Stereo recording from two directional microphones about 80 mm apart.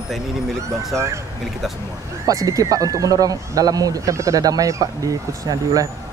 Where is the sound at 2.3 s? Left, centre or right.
Right.